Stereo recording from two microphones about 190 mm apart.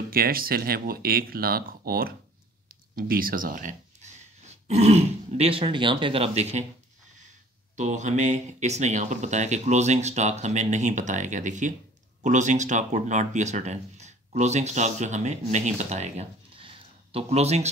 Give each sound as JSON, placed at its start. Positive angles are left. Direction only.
{"t": 0.1, "sound": "speech", "side_deg": -50}
{"t": 7.7, "sound": "speech", "side_deg": -40}